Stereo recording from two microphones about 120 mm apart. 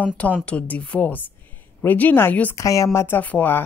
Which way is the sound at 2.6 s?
25° left (ahead or behind).